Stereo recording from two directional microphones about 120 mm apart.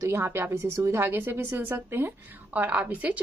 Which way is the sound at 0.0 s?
20° right (ahead or behind).